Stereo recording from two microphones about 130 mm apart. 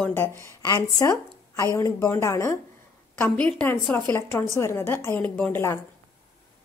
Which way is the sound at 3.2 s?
10° left (ahead or behind).